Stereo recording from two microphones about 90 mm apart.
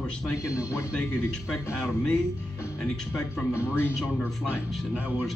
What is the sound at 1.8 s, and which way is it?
Speech, 10° left (ahead or behind).